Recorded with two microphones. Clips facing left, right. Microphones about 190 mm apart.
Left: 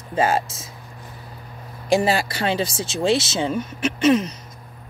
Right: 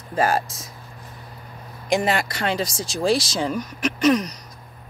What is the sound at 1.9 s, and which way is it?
Speech, 30° left (ahead or behind).